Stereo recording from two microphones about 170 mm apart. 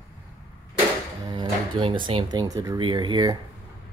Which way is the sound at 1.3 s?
25° right (ahead or behind).